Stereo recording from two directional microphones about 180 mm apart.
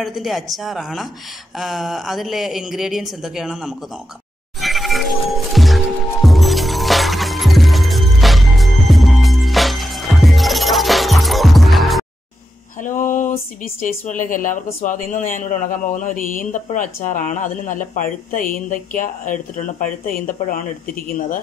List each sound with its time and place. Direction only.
0.0 s speech: centre (ahead or behind)
4.6 s music: centre (ahead or behind)
13.1 s speech: 45° left (ahead or behind)